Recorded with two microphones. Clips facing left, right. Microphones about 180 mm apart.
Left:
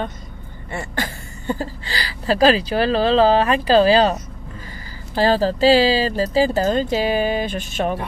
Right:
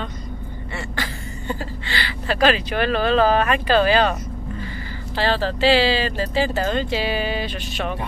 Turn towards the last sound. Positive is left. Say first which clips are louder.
# left 5 dB
turn(degrees=45)  # may be behind; listen again after turning